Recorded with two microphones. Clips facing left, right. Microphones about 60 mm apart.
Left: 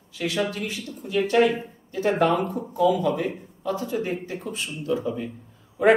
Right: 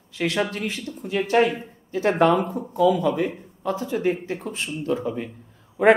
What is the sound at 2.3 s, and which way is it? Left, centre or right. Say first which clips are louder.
A woman's voice: right 2 dB; right.